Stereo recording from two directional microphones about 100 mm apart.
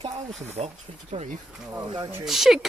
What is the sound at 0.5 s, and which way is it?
Speech, 90° right.